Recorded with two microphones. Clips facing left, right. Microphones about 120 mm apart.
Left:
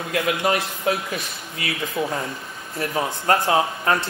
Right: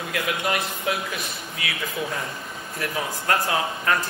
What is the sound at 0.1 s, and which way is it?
Speech, 45° left (ahead or behind).